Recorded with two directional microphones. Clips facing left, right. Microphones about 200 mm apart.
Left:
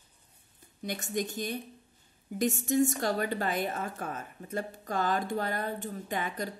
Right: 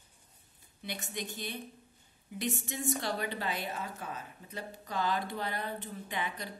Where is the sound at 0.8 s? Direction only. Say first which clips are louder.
Left 7 dB; 45° left (ahead or behind).